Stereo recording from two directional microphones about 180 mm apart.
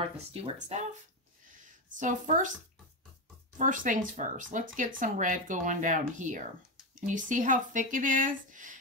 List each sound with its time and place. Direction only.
0.3 s speech: 35° right (ahead or behind)
2.0 s speech: 45° right (ahead or behind)
3.5 s speech: 45° right (ahead or behind)